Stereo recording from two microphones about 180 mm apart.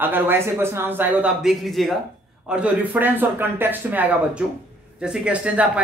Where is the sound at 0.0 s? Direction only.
10° right (ahead or behind).